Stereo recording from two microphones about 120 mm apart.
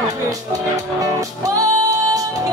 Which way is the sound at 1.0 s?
30° right (ahead or behind).